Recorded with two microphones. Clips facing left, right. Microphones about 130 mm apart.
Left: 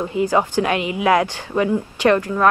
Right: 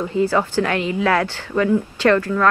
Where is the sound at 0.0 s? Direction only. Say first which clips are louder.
Even; 15° left (ahead or behind).